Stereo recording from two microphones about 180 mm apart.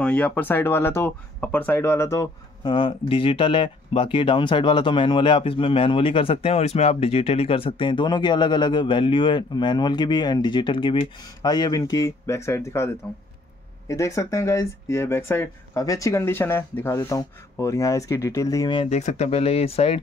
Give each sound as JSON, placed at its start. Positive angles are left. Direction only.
{"t": 0.0, "sound": "speech", "side_deg": 10}
{"t": 2.7, "sound": "speech", "side_deg": 30}